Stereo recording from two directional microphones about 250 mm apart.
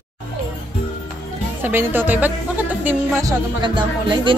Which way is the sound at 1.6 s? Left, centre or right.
Centre.